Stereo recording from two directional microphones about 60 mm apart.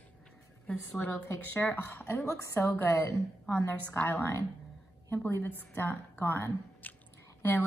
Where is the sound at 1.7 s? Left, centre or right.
Left.